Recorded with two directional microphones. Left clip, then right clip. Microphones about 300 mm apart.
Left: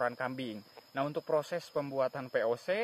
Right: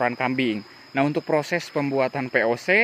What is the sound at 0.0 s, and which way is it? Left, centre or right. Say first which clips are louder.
Speech: right 11 dB; centre.